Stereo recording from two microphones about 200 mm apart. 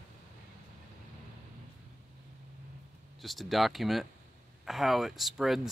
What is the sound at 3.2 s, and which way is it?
Speech, centre (ahead or behind).